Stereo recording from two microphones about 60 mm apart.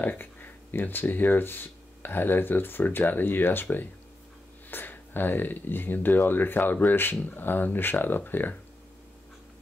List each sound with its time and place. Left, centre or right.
0.0 s speech: left